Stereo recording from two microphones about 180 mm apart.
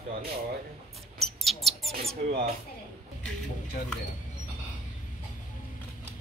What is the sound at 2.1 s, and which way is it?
Speech, 60° right (ahead or behind).